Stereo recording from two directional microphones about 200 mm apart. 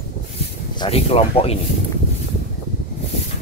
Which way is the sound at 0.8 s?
30° left (ahead or behind).